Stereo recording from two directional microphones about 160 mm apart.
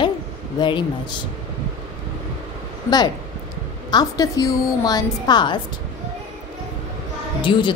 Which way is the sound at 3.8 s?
25° left (ahead or behind).